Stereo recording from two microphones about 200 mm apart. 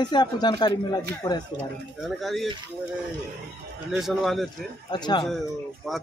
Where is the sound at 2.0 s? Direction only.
Centre (ahead or behind).